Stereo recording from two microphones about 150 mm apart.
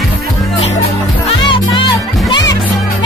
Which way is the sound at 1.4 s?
35° left (ahead or behind).